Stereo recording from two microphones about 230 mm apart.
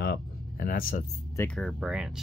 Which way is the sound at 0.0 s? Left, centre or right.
Left.